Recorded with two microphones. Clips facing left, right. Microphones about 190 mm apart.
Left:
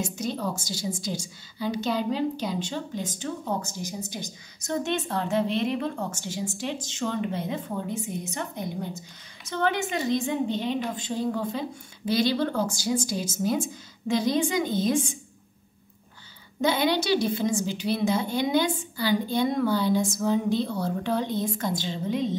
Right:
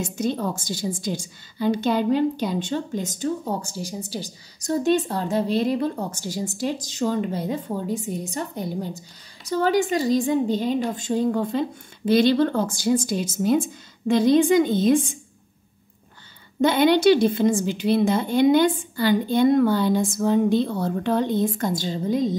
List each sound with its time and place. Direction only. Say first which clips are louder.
0.0 s a woman's voice: right 4 dB; 55° right (ahead or behind)
16.6 s a woman's voice: right 8 dB; 55° right (ahead or behind)